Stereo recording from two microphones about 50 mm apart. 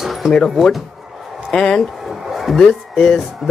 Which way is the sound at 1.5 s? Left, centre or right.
Centre.